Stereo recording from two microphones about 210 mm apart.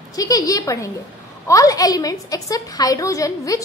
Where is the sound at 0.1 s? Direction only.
15° left (ahead or behind).